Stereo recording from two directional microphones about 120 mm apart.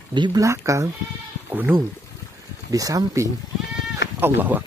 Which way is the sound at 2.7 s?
30° right (ahead or behind).